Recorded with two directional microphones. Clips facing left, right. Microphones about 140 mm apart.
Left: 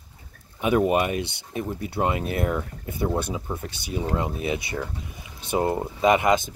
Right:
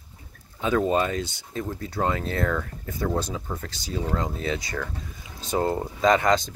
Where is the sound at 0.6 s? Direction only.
15° left (ahead or behind).